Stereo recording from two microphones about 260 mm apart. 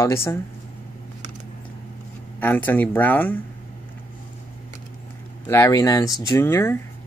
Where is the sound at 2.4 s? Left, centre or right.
Centre.